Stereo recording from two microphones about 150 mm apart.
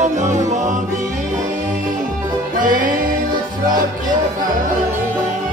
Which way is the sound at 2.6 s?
65° right (ahead or behind).